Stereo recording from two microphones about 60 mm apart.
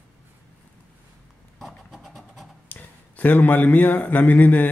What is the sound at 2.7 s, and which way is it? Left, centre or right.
Speech, left.